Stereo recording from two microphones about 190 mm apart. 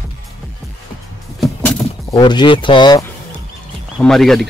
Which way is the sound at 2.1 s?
25° left (ahead or behind).